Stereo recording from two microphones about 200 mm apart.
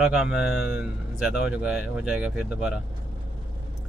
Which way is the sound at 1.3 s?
5° right (ahead or behind).